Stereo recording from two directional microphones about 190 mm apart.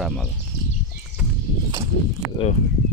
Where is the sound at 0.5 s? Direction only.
60° left (ahead or behind).